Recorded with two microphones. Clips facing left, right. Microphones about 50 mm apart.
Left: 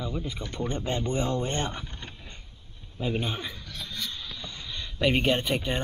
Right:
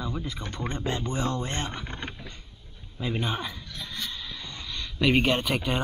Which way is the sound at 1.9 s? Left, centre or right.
Right.